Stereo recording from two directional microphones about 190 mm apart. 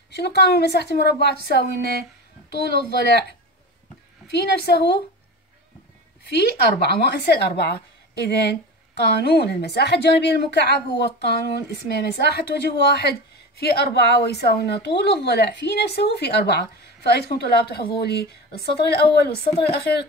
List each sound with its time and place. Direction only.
0.1 s a woman's voice: 60° left (ahead or behind)
4.3 s a woman's voice: 60° left (ahead or behind)
6.3 s a woman's voice: 60° left (ahead or behind)